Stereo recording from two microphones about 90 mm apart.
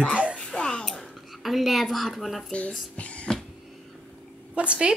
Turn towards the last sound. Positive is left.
turn(degrees=-10)  # may be behind; listen again after turning